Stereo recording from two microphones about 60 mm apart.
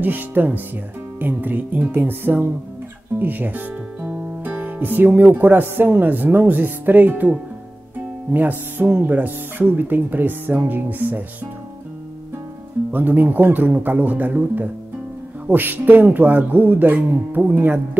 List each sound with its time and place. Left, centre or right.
0.0 s speech: right
12.9 s speech: right